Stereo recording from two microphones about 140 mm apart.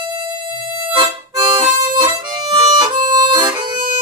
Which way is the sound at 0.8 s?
30° right (ahead or behind).